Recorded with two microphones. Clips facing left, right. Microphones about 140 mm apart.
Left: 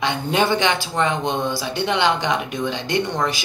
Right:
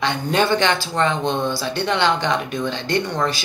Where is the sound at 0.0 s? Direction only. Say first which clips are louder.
Even; 15° left (ahead or behind).